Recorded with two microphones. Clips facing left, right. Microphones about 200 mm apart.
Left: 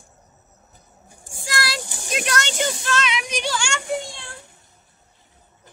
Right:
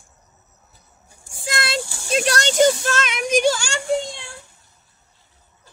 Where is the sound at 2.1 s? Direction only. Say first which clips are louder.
Right 7 dB; 35° right (ahead or behind).